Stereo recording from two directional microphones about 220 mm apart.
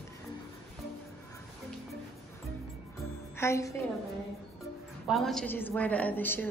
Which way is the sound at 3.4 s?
15° left (ahead or behind).